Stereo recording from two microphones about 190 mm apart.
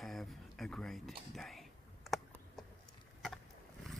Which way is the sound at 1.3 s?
Centre (ahead or behind).